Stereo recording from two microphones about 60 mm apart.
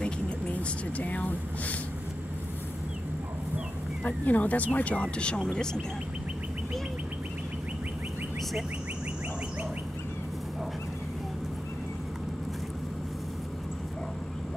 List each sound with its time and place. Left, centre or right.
0.0 s vehicle: left
4.0 s speech: left; by 5.8 s centre